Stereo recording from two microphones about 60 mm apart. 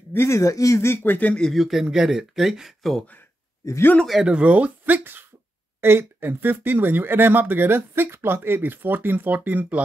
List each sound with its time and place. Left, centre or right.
0.1 s speech: left
0.4 s speech: left
1.0 s speech: left
1.5 s speech: centre
4.2 s speech: centre
5.8 s speech: right